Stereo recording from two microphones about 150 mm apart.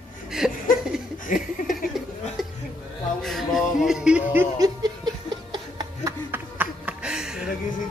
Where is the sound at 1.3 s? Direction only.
60° left (ahead or behind).